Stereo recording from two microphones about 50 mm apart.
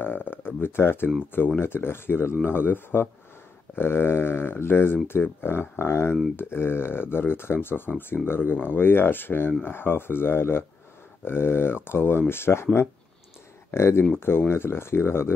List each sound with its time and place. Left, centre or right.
0.0 s speech: left
13.7 s speech: left